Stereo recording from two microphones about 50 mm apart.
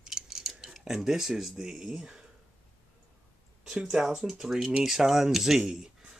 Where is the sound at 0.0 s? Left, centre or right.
Centre.